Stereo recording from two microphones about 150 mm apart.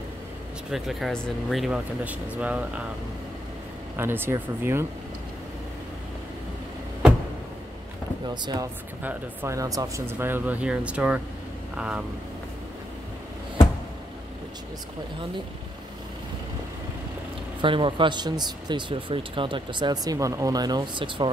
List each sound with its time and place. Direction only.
0.7 s speech: centre (ahead or behind)
3.9 s speech: 15° right (ahead or behind)
9.0 s speech: 15° right (ahead or behind)
17.6 s speech: 35° right (ahead or behind)